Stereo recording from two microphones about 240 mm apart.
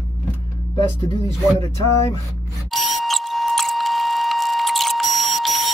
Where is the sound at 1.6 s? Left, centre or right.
Centre.